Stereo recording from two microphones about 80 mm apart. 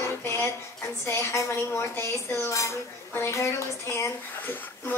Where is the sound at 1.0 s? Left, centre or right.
Left.